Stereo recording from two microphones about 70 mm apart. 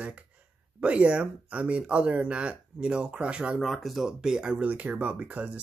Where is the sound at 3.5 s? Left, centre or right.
Centre.